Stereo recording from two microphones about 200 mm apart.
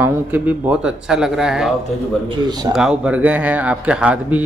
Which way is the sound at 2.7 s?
5° right (ahead or behind).